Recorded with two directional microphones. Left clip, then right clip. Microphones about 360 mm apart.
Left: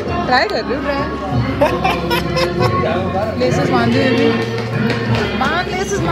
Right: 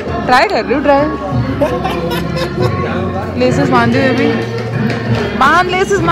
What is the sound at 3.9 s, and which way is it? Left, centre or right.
A woman's voice, centre.